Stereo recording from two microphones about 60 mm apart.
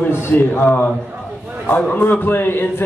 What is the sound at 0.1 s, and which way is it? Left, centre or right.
A man's voice, left.